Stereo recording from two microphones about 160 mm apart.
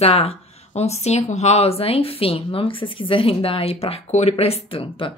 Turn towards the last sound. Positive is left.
turn(degrees=35)  # may be behind; listen again after turning